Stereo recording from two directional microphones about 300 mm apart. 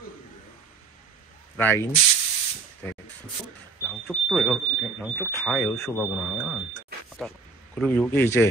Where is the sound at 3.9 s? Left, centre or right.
Centre.